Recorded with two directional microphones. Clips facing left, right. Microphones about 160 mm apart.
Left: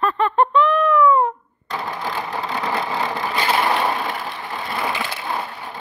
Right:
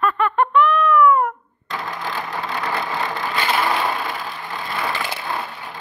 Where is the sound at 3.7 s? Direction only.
20° left (ahead or behind).